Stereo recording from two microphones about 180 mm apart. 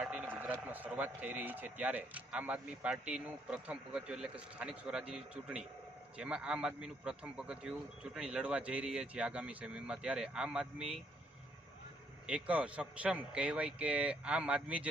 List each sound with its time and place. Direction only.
0.0 s vehicle: 5° right (ahead or behind)
0.7 s a man's voice: 10° right (ahead or behind)
12.3 s speech: 5° right (ahead or behind)